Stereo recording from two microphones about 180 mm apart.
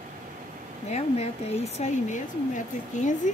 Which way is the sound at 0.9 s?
35° left (ahead or behind).